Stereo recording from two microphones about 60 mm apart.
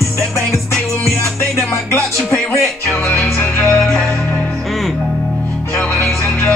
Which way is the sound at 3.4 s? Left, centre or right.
Left.